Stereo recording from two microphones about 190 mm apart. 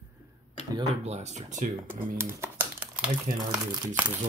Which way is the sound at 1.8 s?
10° right (ahead or behind).